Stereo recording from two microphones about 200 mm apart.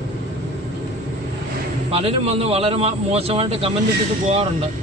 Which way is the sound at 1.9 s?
30° right (ahead or behind).